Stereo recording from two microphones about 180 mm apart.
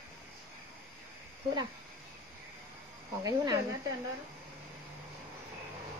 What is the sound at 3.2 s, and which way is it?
Speech, 20° right (ahead or behind).